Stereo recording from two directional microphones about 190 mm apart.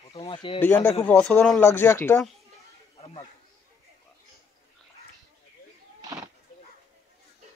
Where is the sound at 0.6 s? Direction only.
10° left (ahead or behind).